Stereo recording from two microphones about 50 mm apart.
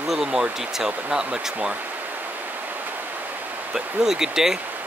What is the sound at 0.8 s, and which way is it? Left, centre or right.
Speech, centre.